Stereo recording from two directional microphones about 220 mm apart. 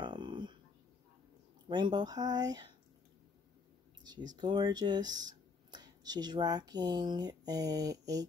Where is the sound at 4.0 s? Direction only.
20° right (ahead or behind).